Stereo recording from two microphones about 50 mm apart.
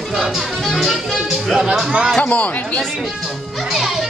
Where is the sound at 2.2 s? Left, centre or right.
Left.